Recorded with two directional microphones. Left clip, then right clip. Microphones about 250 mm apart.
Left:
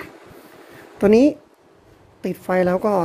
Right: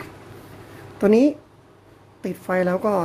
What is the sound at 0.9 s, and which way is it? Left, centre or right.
A woman's voice, centre.